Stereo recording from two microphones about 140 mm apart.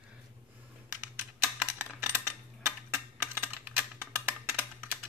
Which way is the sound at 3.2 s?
15° right (ahead or behind).